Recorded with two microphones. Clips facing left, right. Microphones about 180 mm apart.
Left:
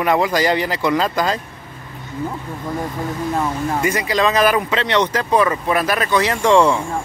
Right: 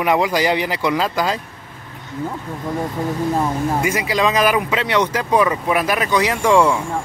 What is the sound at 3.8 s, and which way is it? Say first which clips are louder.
Speech: left 3 dB; 10° right (ahead or behind).